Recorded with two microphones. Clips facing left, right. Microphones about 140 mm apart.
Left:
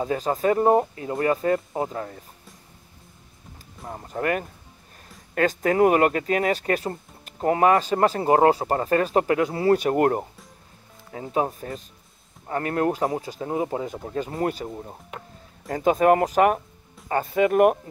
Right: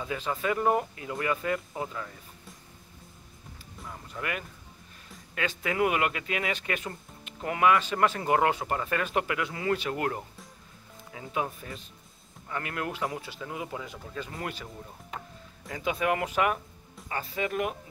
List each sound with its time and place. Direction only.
0.0 s speech: 40° left (ahead or behind)
3.8 s speech: 45° left (ahead or behind)